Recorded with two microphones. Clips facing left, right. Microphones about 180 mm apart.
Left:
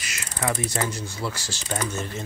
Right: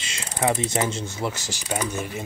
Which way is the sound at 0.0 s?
25° right (ahead or behind).